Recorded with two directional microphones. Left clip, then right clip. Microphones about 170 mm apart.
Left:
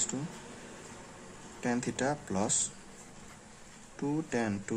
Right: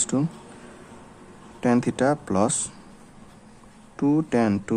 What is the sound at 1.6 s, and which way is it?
Speech, 35° right (ahead or behind).